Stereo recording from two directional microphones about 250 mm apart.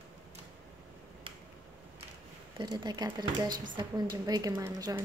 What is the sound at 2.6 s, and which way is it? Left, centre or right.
Speech, centre.